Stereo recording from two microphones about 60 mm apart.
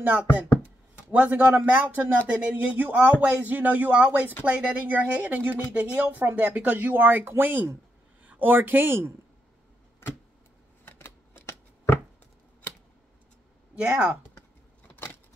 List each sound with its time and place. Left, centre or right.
0.0 s speech: right
10.0 s a sound: left
10.9 s typewriter: left
13.7 s speech: right